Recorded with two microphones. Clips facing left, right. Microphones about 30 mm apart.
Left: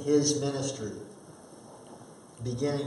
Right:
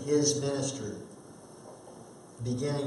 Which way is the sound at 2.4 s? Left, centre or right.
Centre.